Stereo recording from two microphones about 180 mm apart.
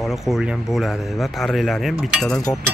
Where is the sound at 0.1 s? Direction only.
Centre (ahead or behind).